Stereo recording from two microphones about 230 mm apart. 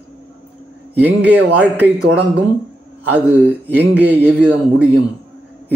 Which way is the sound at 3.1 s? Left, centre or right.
Centre.